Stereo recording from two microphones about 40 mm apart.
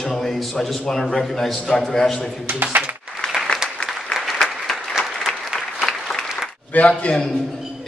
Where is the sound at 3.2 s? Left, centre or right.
Centre.